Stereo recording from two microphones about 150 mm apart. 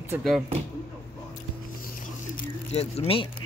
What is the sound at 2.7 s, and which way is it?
Speech, 45° left (ahead or behind).